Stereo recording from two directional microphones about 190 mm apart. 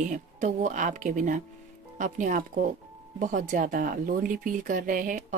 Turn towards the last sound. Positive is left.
turn(degrees=-45)  # may be behind; listen again after turning